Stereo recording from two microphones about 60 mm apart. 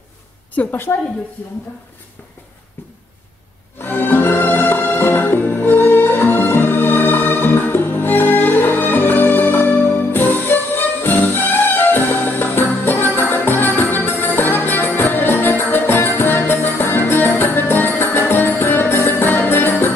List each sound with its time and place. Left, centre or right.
0.6 s a woman's voice: left
3.8 s music: left